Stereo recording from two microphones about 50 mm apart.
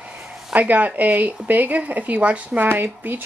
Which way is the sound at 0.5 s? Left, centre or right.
Right.